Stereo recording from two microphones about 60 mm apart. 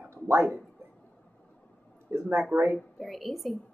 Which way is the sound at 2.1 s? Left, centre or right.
Right.